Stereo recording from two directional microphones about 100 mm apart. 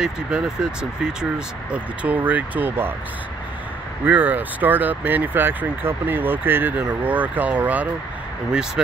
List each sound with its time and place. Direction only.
0.0 s speech: 10° right (ahead or behind)
4.0 s speech: 20° right (ahead or behind)